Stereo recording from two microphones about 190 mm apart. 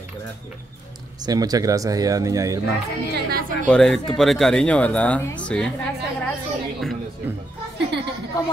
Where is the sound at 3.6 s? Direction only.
5° left (ahead or behind).